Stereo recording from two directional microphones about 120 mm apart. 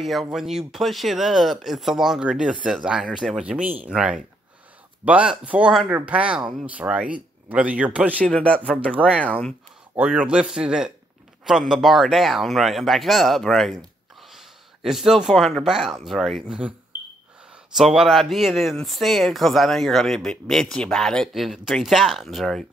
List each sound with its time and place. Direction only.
0.0 s speech: centre (ahead or behind)
8.2 s speech: 10° left (ahead or behind)
9.1 s speech: 10° right (ahead or behind)
17.7 s speech: centre (ahead or behind)